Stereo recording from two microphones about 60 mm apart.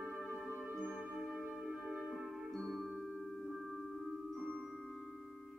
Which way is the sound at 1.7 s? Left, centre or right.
Centre.